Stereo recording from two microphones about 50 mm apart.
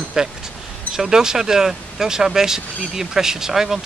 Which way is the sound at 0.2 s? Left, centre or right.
Centre.